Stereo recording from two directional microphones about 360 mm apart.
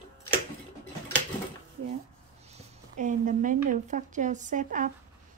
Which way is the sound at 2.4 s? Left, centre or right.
Centre.